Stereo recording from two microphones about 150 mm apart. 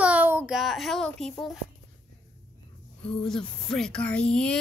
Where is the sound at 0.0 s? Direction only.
10° right (ahead or behind).